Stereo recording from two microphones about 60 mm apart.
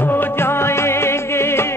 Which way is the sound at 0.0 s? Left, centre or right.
Left.